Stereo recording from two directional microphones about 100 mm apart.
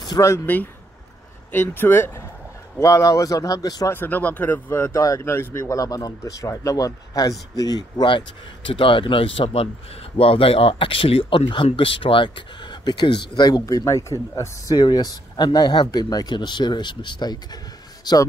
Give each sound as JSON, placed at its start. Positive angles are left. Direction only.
{"t": 0.2, "sound": "speech", "side_deg": 35}
{"t": 1.5, "sound": "speech", "side_deg": 20}
{"t": 3.9, "sound": "speech", "side_deg": 20}
{"t": 8.6, "sound": "speech", "side_deg": 60}
{"t": 14.8, "sound": "speech", "side_deg": 45}